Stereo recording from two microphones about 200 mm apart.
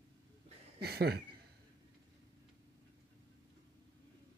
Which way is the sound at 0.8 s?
55° right (ahead or behind).